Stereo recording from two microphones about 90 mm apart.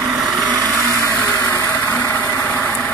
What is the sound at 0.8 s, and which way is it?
Blender, 30° right (ahead or behind).